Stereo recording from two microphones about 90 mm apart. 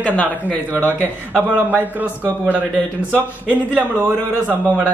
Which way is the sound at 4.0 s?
20° right (ahead or behind).